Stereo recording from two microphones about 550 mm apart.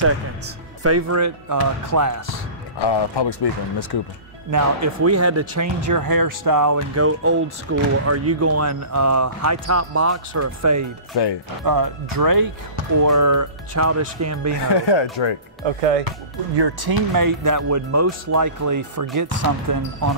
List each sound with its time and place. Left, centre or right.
0.8 s speech: right
2.8 s speech: left
4.5 s speech: right
11.1 s speech: left
11.6 s speech: right
14.6 s speech: left
15.6 s speech: right
16.5 s speech: right